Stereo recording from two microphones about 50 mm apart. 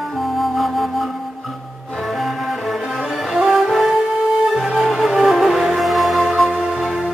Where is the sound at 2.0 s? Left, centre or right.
Centre.